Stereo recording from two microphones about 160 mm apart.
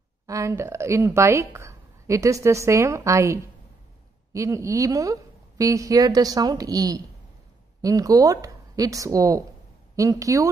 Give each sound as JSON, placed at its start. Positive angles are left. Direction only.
{"t": 0.3, "sound": "a woman's voice", "side_deg": -20}